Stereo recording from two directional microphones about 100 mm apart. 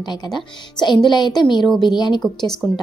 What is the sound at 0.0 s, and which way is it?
Speech, 45° left (ahead or behind).